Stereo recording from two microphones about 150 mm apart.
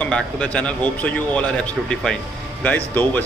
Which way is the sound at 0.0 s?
10° left (ahead or behind).